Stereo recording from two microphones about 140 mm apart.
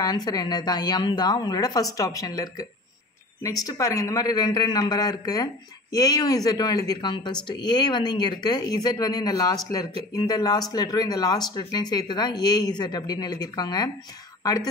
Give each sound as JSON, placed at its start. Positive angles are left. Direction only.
{"t": 0.0, "sound": "a man's voice", "side_deg": 30}